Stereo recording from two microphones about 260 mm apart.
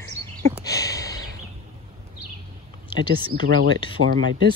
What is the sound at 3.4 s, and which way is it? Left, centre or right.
Speech, right.